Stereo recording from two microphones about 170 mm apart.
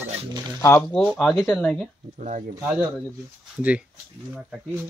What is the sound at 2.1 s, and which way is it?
Speech, 45° right (ahead or behind).